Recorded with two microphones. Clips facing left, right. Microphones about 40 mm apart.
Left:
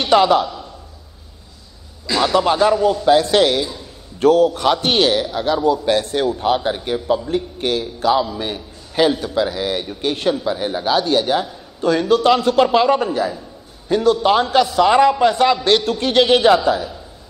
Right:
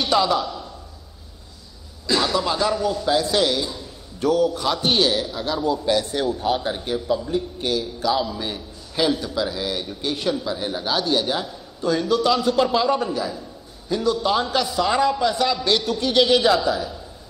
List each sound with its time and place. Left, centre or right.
0.0 s a man's voice: left
2.3 s a man's voice: left
3.1 s a man's voice: left
12.1 s a man's voice: left
13.8 s a man's voice: left